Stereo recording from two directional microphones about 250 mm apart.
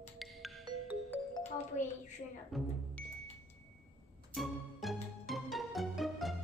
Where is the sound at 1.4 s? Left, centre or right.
Left.